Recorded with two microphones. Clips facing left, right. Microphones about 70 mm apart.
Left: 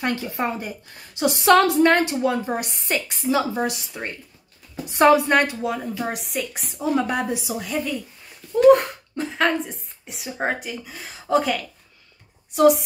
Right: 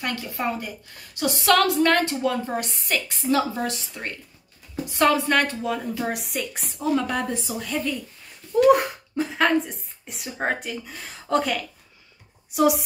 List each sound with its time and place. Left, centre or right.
0.0 s a woman's voice: left
5.5 s a woman's voice: centre
6.8 s a woman's voice: centre